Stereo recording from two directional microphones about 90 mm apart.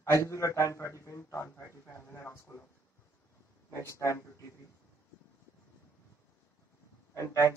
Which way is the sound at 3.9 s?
35° left (ahead or behind).